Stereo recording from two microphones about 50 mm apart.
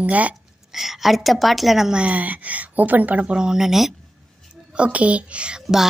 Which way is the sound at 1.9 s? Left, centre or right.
Right.